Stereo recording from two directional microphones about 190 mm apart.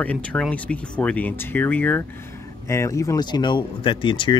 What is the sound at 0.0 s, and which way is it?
Speech, 5° left (ahead or behind).